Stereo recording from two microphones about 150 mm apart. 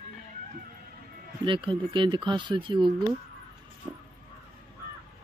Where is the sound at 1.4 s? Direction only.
35° right (ahead or behind).